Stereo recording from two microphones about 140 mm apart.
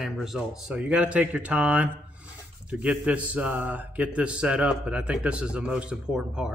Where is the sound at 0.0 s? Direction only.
Centre (ahead or behind).